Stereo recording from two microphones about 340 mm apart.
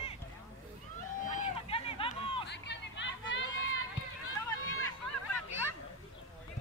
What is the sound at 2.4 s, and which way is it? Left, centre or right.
Hubbub, left.